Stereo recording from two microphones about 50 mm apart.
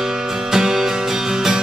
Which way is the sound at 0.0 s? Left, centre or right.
Centre.